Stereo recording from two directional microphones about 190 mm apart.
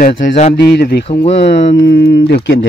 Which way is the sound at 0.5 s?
60° left (ahead or behind).